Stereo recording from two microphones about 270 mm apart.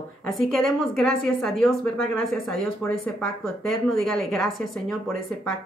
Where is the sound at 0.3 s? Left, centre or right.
Centre.